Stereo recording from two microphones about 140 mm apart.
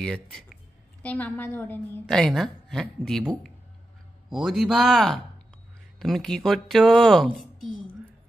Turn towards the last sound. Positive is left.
turn(degrees=0)  # may be behind; listen again after turning